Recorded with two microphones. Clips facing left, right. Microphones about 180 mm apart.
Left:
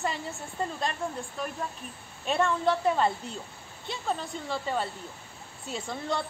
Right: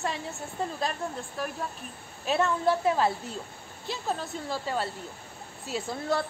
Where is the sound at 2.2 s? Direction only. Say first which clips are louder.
Right 1 dB; 5° right (ahead or behind).